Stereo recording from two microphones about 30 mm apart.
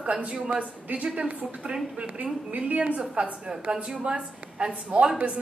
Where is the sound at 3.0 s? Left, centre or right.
Right.